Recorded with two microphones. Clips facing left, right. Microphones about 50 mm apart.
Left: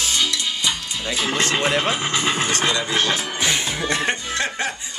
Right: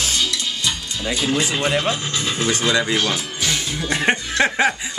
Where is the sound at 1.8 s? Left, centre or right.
Left.